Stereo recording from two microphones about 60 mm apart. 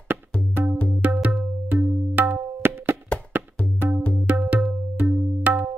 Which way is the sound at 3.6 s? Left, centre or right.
Left.